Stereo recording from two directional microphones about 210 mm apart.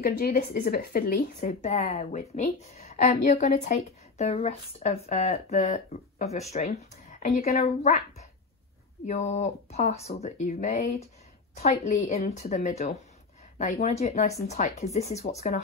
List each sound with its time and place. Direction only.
0.0 s speech: 45° left (ahead or behind)
9.0 s speech: 30° left (ahead or behind)